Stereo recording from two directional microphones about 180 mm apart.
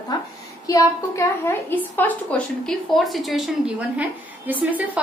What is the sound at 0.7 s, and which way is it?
A woman's voice, 20° left (ahead or behind).